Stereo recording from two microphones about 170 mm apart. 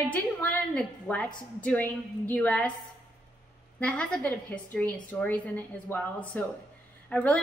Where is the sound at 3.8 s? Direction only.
5° left (ahead or behind).